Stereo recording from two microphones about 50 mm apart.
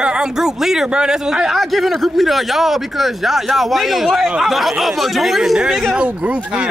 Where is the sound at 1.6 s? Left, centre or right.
Centre.